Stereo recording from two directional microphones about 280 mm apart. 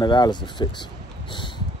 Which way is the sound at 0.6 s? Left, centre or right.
Centre.